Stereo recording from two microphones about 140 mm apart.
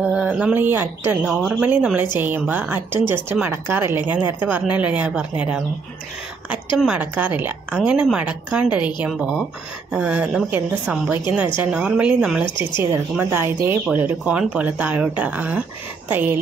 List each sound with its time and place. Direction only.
0.0 s speech: 5° right (ahead or behind)
6.8 s speech: 10° right (ahead or behind)
12.4 s speech: 35° left (ahead or behind)
13.1 s speech: 15° right (ahead or behind)